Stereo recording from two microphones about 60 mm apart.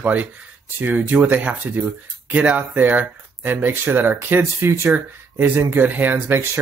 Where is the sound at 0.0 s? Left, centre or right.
Right.